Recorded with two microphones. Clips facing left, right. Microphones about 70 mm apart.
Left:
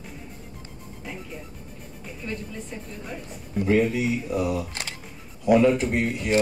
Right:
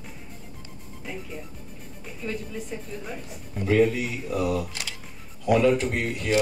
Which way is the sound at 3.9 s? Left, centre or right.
Left.